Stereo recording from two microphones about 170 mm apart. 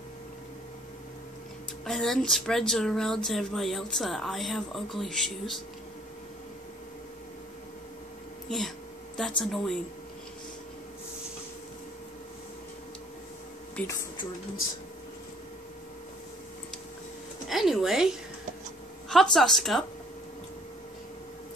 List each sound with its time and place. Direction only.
1.9 s speech: centre (ahead or behind)
8.5 s a sound: centre (ahead or behind)
9.4 s speech: centre (ahead or behind)
13.7 s speech: 15° left (ahead or behind)
17.5 s a woman's voice: centre (ahead or behind)